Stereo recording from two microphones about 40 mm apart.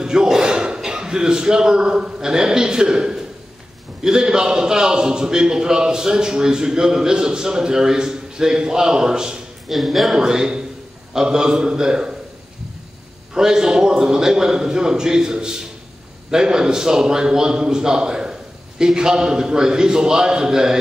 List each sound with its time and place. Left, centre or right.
0.0 s a sound: centre
0.7 s a man's voice: centre
9.7 s speech: centre
10.1 s a man's voice: centre
13.3 s a man's voice: centre